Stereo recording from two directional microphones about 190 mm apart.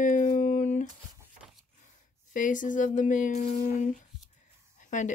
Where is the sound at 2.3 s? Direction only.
45° left (ahead or behind).